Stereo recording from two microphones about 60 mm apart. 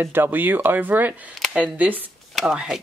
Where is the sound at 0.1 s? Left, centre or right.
Right.